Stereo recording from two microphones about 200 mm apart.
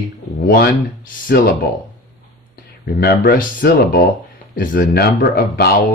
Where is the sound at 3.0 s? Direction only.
50° left (ahead or behind).